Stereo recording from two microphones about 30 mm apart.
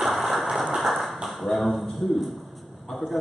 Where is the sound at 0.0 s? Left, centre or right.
Centre.